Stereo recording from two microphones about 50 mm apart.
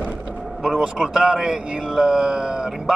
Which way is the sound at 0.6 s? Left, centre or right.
Centre.